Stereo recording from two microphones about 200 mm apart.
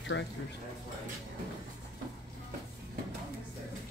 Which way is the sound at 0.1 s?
65° left (ahead or behind).